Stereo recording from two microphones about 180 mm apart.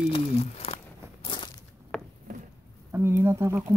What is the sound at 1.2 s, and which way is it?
Crushing, 25° left (ahead or behind).